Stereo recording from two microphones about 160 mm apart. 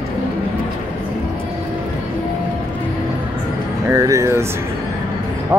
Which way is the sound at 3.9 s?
20° right (ahead or behind).